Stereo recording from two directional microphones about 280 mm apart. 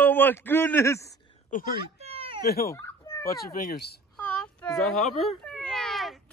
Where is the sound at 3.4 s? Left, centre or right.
Left.